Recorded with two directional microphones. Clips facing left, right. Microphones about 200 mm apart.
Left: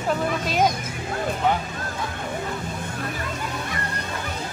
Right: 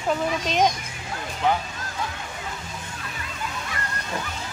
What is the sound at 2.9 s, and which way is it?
Music, 50° left (ahead or behind).